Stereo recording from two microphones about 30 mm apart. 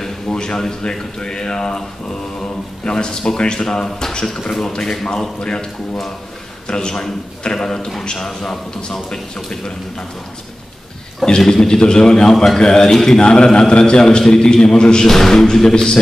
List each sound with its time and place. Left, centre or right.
0.3 s a man's voice: left
2.8 s a man's voice: left
4.5 s a man's voice: centre; by 5.7 s left
6.7 s a man's voice: left
11.2 s a man's voice: left
13.2 s a man's voice: left
15.0 s a man's voice: centre